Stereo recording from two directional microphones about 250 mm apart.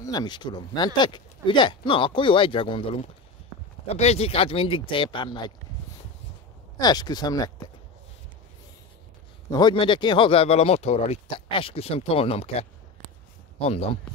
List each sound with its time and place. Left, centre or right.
0.0 s speech: centre
6.8 s speech: centre
9.5 s speech: centre